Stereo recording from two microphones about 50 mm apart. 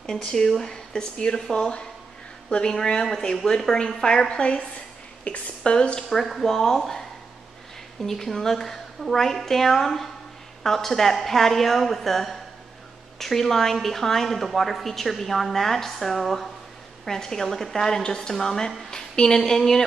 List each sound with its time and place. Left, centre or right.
0.6 s a woman's voice: centre
6.0 s a woman's voice: centre